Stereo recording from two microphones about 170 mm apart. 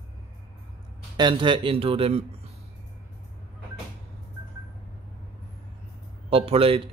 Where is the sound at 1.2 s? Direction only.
30° right (ahead or behind).